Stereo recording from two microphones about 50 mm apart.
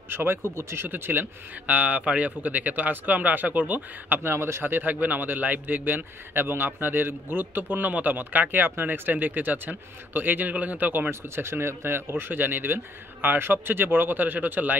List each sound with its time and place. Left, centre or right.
0.1 s speech: right
0.8 s a man's voice: right
4.2 s a man's voice: right
4.6 s a man's voice: right
11.2 s speech: right